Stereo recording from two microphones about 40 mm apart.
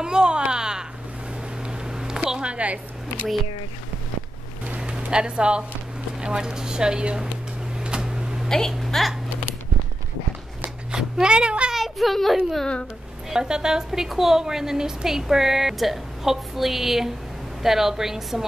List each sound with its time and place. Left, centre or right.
0.0 s a sound: centre
2.5 s a woman's voice: right
4.7 s a sound: right
6.2 s speech: centre
8.0 s a sound: centre
8.5 s speech: centre
8.7 s speech: centre
10.9 s speech: centre
11.7 s a child's voice: centre
13.3 s a woman's voice: centre